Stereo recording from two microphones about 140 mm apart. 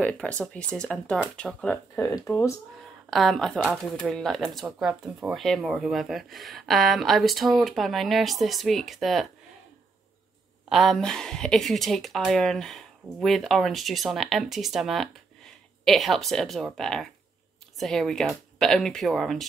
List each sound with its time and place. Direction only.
0.0 s speech: 10° left (ahead or behind)
2.0 s speech: 25° left (ahead or behind)
3.1 s speech: centre (ahead or behind)
10.7 s speech: centre (ahead or behind)